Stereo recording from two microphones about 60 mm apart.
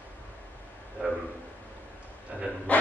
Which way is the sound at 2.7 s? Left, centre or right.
Left.